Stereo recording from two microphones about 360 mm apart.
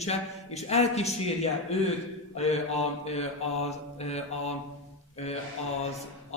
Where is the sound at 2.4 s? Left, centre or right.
Centre.